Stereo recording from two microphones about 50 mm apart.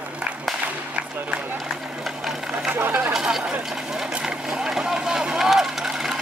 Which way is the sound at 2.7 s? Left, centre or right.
Right.